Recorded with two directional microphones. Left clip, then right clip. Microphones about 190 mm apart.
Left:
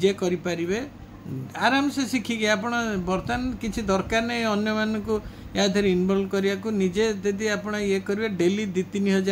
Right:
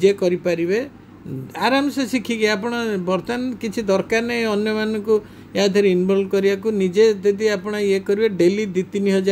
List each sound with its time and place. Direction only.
0.0 s speech: 20° right (ahead or behind)